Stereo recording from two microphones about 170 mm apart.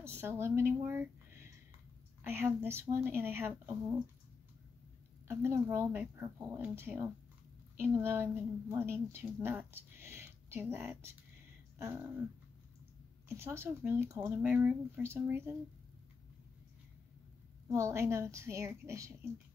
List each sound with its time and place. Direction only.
0.0 s a woman's voice: 15° right (ahead or behind)
5.3 s a woman's voice: 15° right (ahead or behind)
13.3 s a woman's voice: 15° right (ahead or behind)
17.6 s a woman's voice: 15° right (ahead or behind)